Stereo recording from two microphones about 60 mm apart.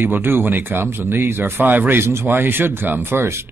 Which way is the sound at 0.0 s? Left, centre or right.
Right.